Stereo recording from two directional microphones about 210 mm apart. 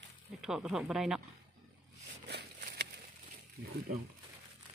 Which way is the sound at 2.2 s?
50° right (ahead or behind).